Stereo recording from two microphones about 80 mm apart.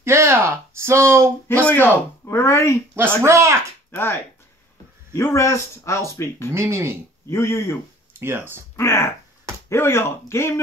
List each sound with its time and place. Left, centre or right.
0.0 s speech: right
1.6 s speech: left
3.2 s speech: right
3.9 s speech: left
6.5 s speech: right
7.2 s speech: left
8.1 s speech: right
8.7 s speech: left